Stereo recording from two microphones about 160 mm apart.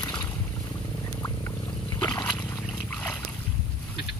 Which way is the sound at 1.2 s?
20° left (ahead or behind).